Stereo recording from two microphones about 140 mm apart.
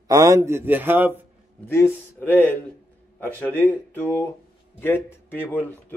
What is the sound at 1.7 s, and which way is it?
Speech, 15° left (ahead or behind).